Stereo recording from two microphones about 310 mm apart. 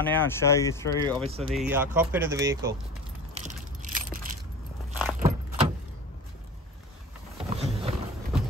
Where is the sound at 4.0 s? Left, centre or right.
Right.